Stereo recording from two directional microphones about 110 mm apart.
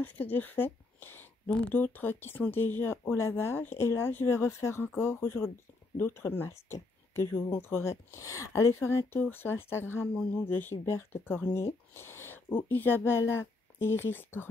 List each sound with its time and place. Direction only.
0.0 s speech: 15° left (ahead or behind)